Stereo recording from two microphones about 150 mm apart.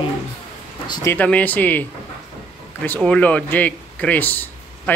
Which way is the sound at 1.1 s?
10° left (ahead or behind).